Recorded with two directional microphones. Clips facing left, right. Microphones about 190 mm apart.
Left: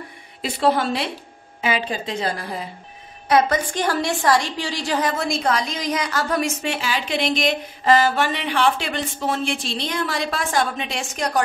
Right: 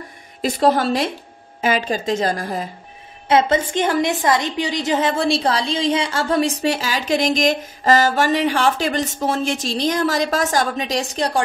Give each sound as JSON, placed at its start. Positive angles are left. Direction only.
{"t": 0.4, "sound": "a woman's voice", "side_deg": -40}
{"t": 3.3, "sound": "a woman's voice", "side_deg": -25}